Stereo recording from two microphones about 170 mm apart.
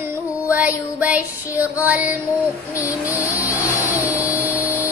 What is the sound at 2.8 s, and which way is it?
Vehicle, 20° left (ahead or behind).